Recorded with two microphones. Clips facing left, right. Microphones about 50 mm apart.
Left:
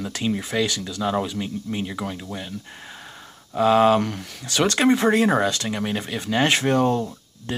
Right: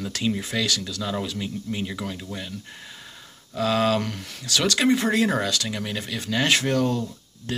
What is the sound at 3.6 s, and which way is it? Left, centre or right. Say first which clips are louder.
Speech: left 6 dB; left.